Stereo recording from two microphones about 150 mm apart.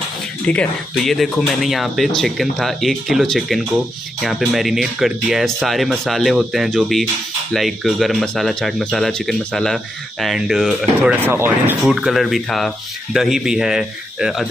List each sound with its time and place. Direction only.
0.5 s speech: 5° left (ahead or behind)
11.2 s speech: 15° right (ahead or behind)
11.8 s speech: centre (ahead or behind)